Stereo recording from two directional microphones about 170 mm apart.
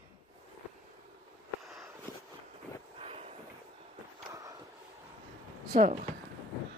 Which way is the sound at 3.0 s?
35° right (ahead or behind).